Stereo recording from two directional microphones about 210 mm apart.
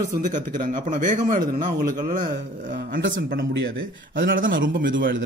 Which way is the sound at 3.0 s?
60° right (ahead or behind).